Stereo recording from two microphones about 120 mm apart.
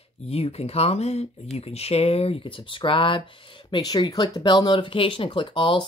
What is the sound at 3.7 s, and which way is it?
Speech, 35° left (ahead or behind).